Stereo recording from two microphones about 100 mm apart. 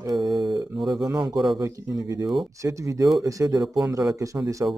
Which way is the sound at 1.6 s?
35° right (ahead or behind).